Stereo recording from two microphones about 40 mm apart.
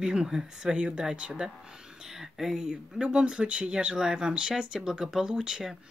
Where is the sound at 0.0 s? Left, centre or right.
Centre.